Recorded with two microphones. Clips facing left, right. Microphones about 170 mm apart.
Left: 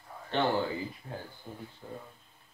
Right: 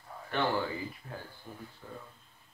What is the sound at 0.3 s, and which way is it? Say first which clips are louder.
Speech: left 2 dB; 25° left (ahead or behind).